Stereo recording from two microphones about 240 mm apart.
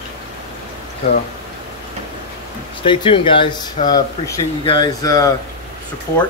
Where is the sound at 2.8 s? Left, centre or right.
Left.